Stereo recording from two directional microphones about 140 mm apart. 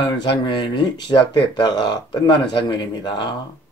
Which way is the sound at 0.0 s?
30° left (ahead or behind).